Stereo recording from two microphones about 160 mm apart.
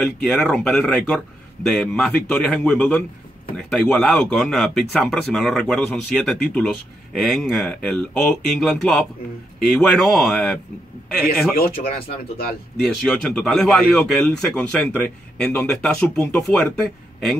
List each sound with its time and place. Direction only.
0.0 s a man's voice: centre (ahead or behind)
11.5 s speech: 70° left (ahead or behind)
12.8 s speech: 5° left (ahead or behind)